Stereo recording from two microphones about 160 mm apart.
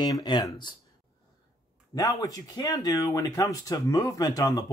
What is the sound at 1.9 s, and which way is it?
Speech, 20° left (ahead or behind).